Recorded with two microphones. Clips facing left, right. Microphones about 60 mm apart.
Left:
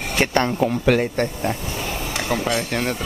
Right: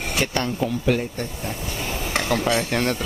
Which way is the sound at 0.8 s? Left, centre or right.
Left.